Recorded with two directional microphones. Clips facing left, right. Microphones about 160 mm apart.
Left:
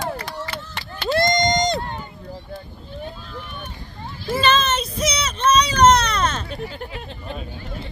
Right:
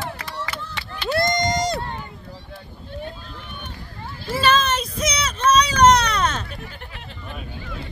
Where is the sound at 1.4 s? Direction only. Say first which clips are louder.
Left 2 dB; 5° right (ahead or behind).